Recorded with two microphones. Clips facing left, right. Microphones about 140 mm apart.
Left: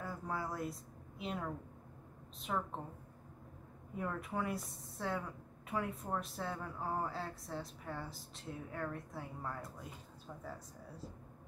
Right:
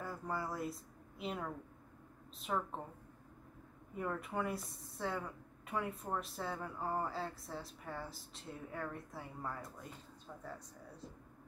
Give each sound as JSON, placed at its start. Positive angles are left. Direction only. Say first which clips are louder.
{"t": 0.0, "sound": "a woman's voice", "louder": "even", "side_deg": 0}
{"t": 3.9, "sound": "a woman's voice", "louder": "even", "side_deg": 0}